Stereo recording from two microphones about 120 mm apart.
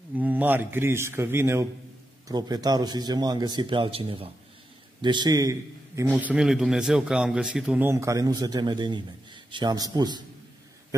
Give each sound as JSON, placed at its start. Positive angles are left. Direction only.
{"t": 0.1, "sound": "a man's voice", "side_deg": -15}
{"t": 2.2, "sound": "a man's voice", "side_deg": -35}
{"t": 5.0, "sound": "a man's voice", "side_deg": -40}
{"t": 6.4, "sound": "a man's voice", "side_deg": -5}
{"t": 7.8, "sound": "a man's voice", "side_deg": -25}